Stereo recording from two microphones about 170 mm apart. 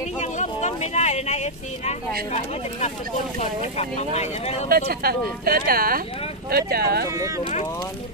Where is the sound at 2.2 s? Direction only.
40° left (ahead or behind).